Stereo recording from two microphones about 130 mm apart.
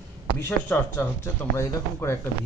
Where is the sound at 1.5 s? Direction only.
20° left (ahead or behind).